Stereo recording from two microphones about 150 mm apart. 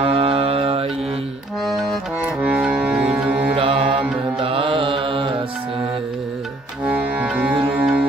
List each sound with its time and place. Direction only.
0.0 s mantra: 40° right (ahead or behind)
2.4 s music: 5° right (ahead or behind)
3.5 s music: 35° right (ahead or behind)
4.4 s mantra: 35° right (ahead or behind)
6.9 s music: 10° right (ahead or behind)